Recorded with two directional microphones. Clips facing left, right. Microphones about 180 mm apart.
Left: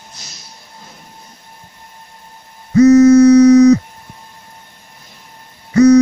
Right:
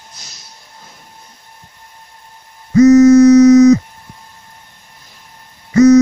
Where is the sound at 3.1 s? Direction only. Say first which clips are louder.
Right 1 dB; 60° left (ahead or behind).